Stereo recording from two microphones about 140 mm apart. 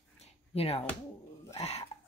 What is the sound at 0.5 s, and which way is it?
Speech, 45° left (ahead or behind).